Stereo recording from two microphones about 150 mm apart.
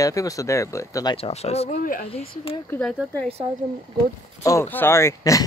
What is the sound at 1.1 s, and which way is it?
Speech, 40° left (ahead or behind).